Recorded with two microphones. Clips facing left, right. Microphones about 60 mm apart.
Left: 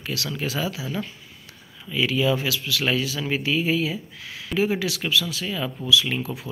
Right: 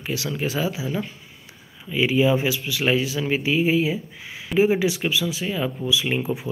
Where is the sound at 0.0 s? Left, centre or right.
Centre.